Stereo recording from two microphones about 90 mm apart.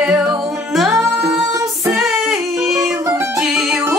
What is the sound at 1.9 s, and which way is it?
Music, centre (ahead or behind).